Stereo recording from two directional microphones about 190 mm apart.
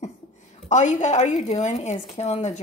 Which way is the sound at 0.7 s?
40° left (ahead or behind).